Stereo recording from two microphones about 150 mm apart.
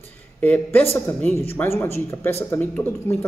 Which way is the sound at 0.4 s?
10° left (ahead or behind).